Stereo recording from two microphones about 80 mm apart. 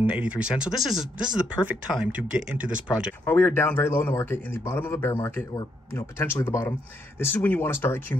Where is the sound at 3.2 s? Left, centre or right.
Left.